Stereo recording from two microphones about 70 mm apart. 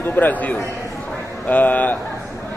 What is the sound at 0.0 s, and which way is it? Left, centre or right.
A man's voice, left.